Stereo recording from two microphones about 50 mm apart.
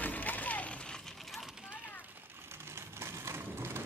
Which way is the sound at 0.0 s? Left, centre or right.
Left.